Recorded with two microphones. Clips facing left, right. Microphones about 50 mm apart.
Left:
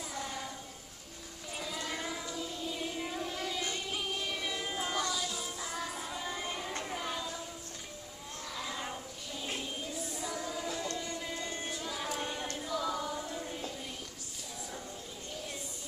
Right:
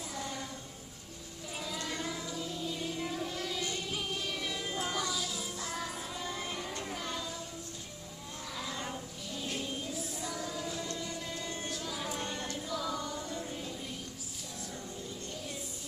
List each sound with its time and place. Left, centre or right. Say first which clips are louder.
0.1 s music: even; centre
1.6 s music: even; centre
8.5 s music: even; centre